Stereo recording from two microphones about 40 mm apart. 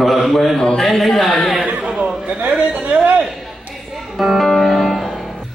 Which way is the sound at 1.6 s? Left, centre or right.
Right.